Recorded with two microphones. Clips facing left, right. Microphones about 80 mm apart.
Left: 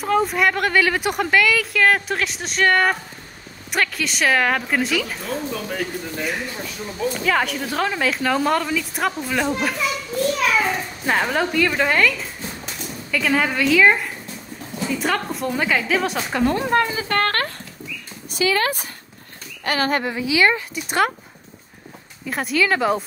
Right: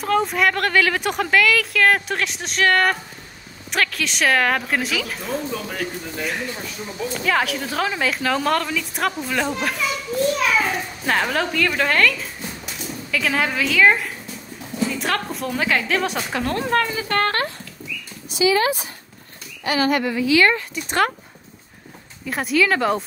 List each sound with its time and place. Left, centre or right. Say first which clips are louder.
0.0 s speech: even; centre
7.2 s speech: right 1 dB; centre
17.1 s a sound: right 2 dB; left
18.3 s speech: right 2 dB; left
20.0 s speech: right 3 dB; left
20.3 s speech: left 1 dB; centre
22.2 s speech: right 1 dB; centre